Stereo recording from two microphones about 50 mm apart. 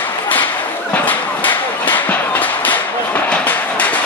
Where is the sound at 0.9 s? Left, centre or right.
Left.